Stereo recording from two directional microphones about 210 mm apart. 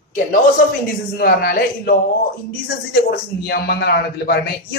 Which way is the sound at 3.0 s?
50° left (ahead or behind).